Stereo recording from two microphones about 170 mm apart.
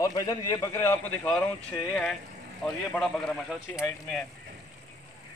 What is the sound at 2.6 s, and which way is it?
Speech, centre (ahead or behind).